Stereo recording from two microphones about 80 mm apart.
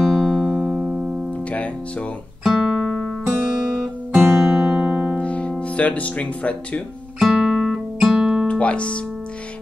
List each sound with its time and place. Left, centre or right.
0.1 s music: centre
0.4 s music: centre
1.5 s speech: centre
2.4 s guitar: centre
4.4 s music: centre
5.2 s music: centre
5.5 s speech: centre
7.2 s guitar: centre
8.5 s speech: centre